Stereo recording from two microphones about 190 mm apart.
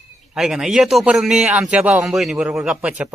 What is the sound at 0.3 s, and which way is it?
A man's voice, 5° right (ahead or behind).